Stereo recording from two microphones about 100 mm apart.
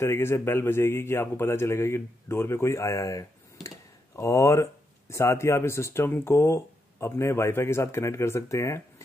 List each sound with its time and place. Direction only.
0.0 s a man's voice: 25° left (ahead or behind)